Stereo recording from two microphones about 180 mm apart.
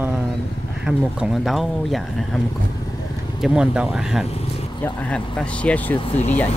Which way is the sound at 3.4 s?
5° right (ahead or behind).